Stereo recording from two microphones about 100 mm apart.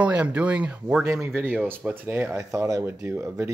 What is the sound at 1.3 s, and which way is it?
Speech, 20° right (ahead or behind).